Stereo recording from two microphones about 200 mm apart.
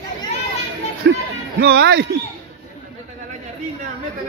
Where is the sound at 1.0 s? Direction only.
60° right (ahead or behind).